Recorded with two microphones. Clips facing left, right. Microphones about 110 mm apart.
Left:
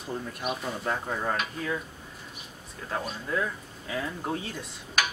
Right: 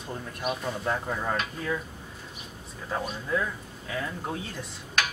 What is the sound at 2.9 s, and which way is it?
Speech, centre (ahead or behind).